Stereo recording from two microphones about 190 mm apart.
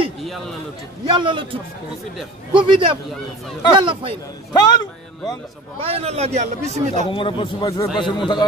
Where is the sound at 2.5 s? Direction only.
25° right (ahead or behind).